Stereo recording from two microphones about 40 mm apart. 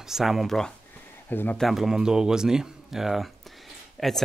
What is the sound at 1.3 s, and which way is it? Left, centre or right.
Speech, left.